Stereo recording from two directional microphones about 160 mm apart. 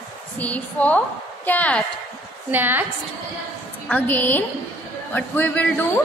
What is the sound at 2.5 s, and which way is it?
Speech, 10° right (ahead or behind).